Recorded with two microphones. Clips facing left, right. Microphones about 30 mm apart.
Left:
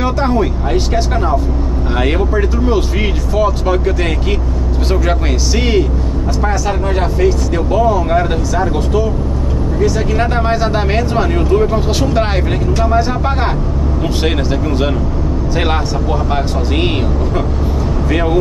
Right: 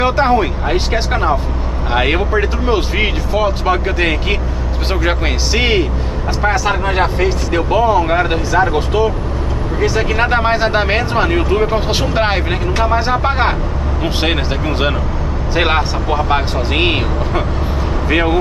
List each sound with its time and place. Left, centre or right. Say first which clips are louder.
0.0 s speech: right 2 dB; right
18.1 s speech: right 1 dB; right